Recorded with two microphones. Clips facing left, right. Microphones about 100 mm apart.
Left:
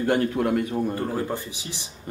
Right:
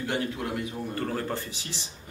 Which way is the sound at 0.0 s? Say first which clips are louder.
Left 8 dB; 50° left (ahead or behind).